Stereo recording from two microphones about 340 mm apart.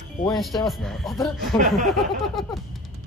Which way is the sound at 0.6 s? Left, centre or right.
Centre.